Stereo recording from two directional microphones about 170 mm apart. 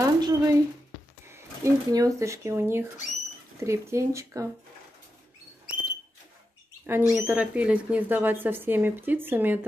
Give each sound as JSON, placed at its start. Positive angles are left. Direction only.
{"t": 0.0, "sound": "a sound", "side_deg": -20}
{"t": 1.3, "sound": "speech", "side_deg": -20}
{"t": 6.9, "sound": "speech", "side_deg": -10}